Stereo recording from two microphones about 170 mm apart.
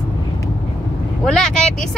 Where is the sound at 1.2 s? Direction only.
5° left (ahead or behind).